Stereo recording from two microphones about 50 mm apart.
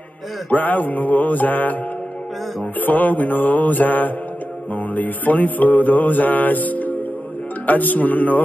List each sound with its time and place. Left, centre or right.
0.5 s mantra: left
2.8 s mantra: left